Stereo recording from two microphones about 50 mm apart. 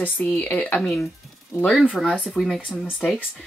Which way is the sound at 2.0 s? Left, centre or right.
Centre.